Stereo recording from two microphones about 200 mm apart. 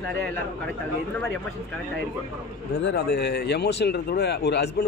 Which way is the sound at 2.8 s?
55° left (ahead or behind).